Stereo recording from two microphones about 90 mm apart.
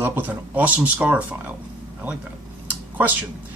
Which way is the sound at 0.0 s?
20° right (ahead or behind).